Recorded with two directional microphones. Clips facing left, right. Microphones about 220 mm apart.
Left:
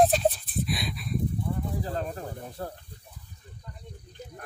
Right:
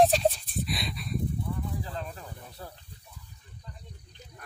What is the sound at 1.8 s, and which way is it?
Snake, 45° left (ahead or behind).